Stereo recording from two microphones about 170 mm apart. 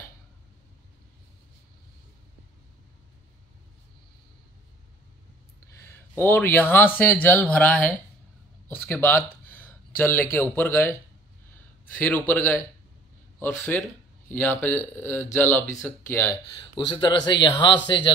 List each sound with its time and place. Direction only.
5.8 s speech: 15° left (ahead or behind)
8.6 s a sound: 10° left (ahead or behind)
10.3 s speech: 10° left (ahead or behind)
16.5 s speech: 25° left (ahead or behind)